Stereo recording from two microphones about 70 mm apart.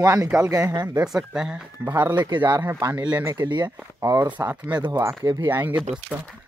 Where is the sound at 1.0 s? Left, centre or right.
Centre.